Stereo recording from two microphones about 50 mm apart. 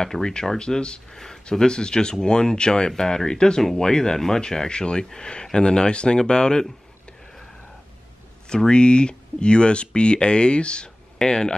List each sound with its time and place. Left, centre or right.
0.0 s speech: centre
8.5 s speech: centre